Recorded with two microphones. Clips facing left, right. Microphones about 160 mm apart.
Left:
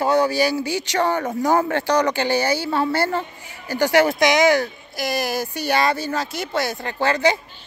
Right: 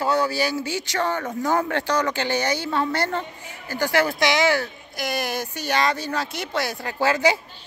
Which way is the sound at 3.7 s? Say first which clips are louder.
Left 5 dB; 20° left (ahead or behind).